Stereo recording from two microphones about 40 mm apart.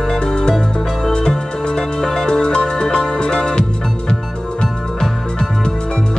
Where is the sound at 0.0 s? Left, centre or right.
Centre.